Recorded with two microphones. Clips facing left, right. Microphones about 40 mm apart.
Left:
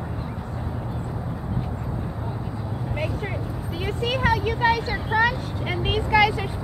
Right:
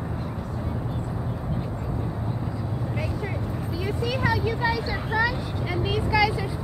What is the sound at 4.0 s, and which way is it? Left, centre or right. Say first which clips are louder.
Vehicle: left 3 dB; left.